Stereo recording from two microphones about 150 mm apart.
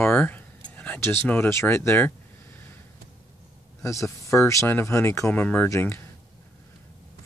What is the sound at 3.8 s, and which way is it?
Speech, 20° left (ahead or behind).